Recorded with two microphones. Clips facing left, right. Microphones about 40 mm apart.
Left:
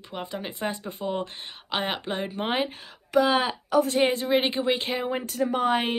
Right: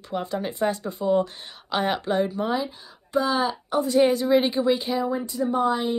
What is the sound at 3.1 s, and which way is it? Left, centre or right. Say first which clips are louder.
Speech: left 1 dB; left.